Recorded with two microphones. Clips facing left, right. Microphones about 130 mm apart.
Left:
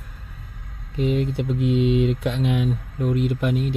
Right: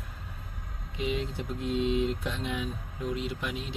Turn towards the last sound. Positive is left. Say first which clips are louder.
# left 12 dB
turn(degrees=50)  # may be behind; listen again after turning